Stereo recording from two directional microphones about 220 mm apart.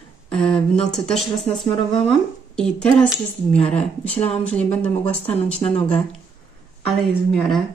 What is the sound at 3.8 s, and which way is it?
Speech, 25° left (ahead or behind).